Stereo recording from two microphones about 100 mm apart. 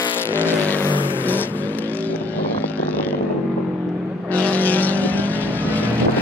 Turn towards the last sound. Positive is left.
turn(degrees=15)  # may be behind; listen again after turning